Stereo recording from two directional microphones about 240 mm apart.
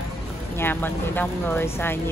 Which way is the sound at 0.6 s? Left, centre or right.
Centre.